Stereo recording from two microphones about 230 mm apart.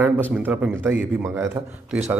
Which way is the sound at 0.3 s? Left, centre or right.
Centre.